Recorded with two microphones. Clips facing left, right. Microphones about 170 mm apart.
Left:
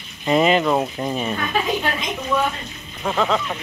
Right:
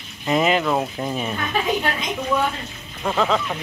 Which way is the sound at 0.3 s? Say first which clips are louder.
Left 2 dB; centre (ahead or behind).